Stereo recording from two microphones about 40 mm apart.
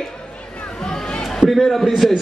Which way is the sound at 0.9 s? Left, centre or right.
Left.